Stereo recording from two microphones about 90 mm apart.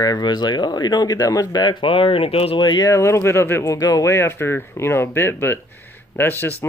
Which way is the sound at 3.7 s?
40° left (ahead or behind).